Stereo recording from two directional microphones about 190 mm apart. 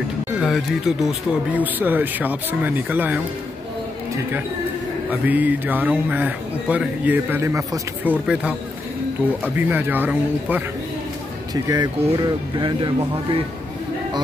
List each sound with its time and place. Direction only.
0.4 s speech: centre (ahead or behind)
5.1 s speech: 10° right (ahead or behind)
11.5 s speech: 20° right (ahead or behind)